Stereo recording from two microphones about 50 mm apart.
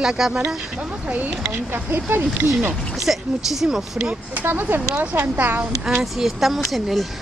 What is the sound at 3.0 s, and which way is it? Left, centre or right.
Speech, centre.